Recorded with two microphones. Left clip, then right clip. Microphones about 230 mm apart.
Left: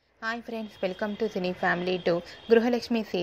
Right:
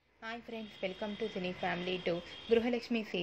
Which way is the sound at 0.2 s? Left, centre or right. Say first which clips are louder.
Left 10 dB; left.